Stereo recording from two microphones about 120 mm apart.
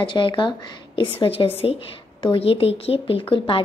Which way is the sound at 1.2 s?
50° left (ahead or behind).